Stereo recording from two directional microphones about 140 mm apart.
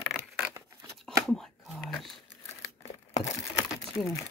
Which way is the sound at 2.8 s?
50° left (ahead or behind).